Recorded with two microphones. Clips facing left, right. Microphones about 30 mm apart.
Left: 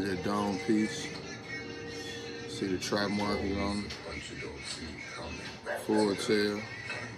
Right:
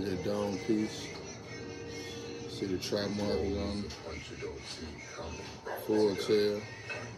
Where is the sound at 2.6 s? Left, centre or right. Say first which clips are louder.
Left 2 dB; left.